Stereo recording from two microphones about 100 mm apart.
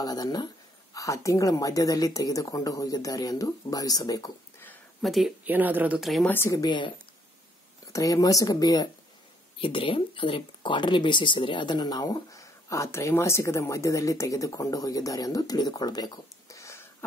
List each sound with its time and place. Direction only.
0.0 s speech: 40° left (ahead or behind)
0.9 s speech: 30° left (ahead or behind)
5.0 s speech: centre (ahead or behind)
5.4 s speech: 15° right (ahead or behind)
5.9 s speech: centre (ahead or behind)
6.2 s speech: 20° left (ahead or behind)
6.5 s speech: 45° left (ahead or behind)
7.8 s speech: 35° left (ahead or behind)
9.6 s speech: 60° left (ahead or behind); by 16.8 s 30° left (ahead or behind)